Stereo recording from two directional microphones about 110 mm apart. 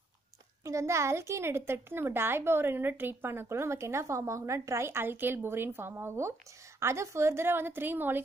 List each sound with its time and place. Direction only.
0.7 s a woman's voice: 25° right (ahead or behind)